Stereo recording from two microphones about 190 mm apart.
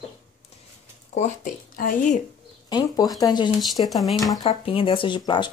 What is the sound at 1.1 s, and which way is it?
Speech, 40° left (ahead or behind).